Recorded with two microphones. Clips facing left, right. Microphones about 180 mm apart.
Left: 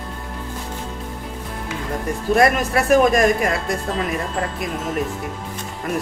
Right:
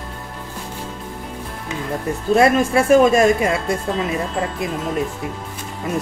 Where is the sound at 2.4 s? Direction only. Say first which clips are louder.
Right 3 dB; 25° right (ahead or behind).